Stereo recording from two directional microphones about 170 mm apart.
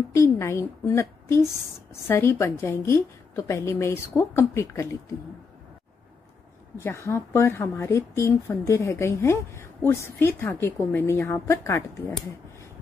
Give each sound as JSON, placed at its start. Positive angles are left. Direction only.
{"t": 0.1, "sound": "speech", "side_deg": 15}
{"t": 6.8, "sound": "speech", "side_deg": 15}